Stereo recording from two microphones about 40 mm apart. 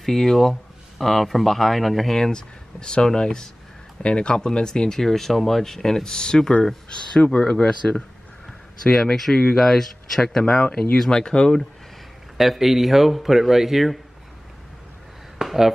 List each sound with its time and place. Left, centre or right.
0.0 s speech: centre
11.1 s speech: left
12.4 s speech: centre
15.3 s a sound: centre